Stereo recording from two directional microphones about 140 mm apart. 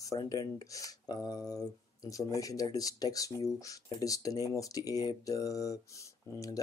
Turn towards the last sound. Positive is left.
turn(degrees=25)  # may be behind; listen again after turning